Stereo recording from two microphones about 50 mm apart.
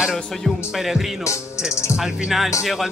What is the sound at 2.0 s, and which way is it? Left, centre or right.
Music, centre.